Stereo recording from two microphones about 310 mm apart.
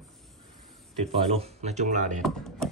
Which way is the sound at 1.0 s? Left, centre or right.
Right.